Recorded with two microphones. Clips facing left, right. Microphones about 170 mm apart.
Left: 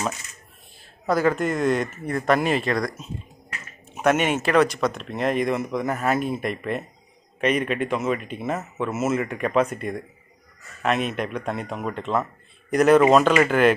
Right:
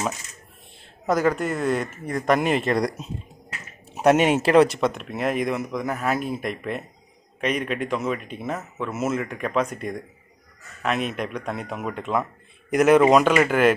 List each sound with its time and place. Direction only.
1.0 s speech: 15° right (ahead or behind)
1.3 s speech: 5° right (ahead or behind)
3.9 s speech: 35° right (ahead or behind); by 13.7 s 5° right (ahead or behind)